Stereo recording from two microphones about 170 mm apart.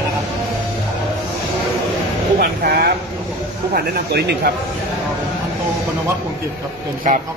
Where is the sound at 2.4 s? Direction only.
65° right (ahead or behind).